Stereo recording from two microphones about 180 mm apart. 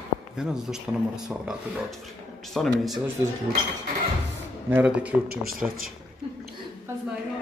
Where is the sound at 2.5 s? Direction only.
Centre (ahead or behind).